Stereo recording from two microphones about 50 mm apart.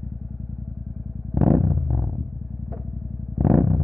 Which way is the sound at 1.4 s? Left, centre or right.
Centre.